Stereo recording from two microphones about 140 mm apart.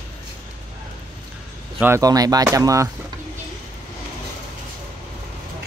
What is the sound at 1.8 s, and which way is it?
Speech, 20° right (ahead or behind).